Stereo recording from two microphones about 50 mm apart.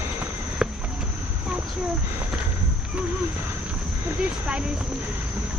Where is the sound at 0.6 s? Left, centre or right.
Centre.